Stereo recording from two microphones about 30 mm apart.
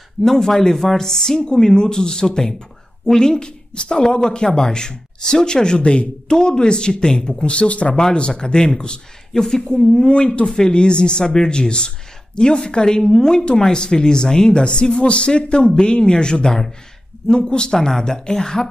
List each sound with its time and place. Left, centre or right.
0.2 s speech: centre
5.8 s speech: left
6.2 s speech: left
7.4 s speech: left
7.9 s speech: left
9.3 s speech: centre
10.0 s speech: left
17.7 s speech: centre